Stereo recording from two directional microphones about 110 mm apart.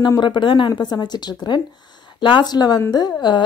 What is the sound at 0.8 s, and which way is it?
Speech, 40° left (ahead or behind).